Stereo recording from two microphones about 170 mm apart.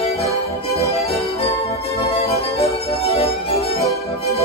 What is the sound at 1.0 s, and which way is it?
Music, 35° left (ahead or behind).